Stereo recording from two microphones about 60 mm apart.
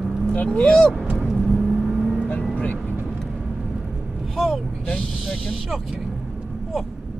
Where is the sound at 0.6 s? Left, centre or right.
Centre.